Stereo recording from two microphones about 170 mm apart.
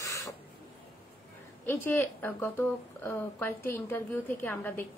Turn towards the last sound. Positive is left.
turn(degrees=10)  # may be behind; listen again after turning